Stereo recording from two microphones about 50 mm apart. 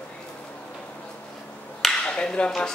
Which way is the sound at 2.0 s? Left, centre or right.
Centre.